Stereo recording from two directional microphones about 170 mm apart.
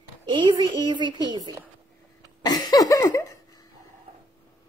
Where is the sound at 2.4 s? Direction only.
25° left (ahead or behind).